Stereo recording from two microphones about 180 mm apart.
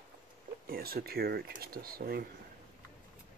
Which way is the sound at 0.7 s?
55° right (ahead or behind).